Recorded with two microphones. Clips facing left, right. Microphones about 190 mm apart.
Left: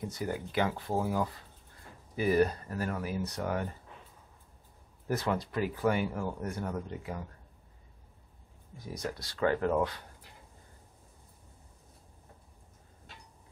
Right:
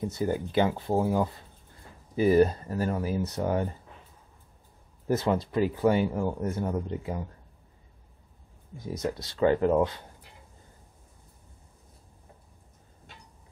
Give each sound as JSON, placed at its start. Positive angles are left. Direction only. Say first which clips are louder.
{"t": 0.1, "sound": "speech", "louder": "right 7 dB", "side_deg": -25}
{"t": 5.0, "sound": "speech", "louder": "right 6 dB", "side_deg": -25}
{"t": 8.7, "sound": "speech", "louder": "right 6 dB", "side_deg": -25}